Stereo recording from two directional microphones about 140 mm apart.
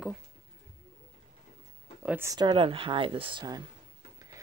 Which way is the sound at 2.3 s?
30° right (ahead or behind).